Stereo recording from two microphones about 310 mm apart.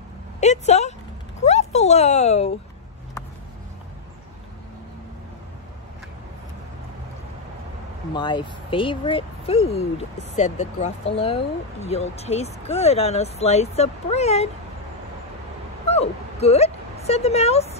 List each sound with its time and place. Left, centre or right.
0.4 s speech: left
8.1 s speech: centre
15.9 s speech: centre